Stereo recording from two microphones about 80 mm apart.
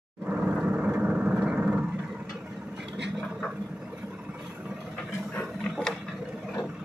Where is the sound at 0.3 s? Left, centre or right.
Centre.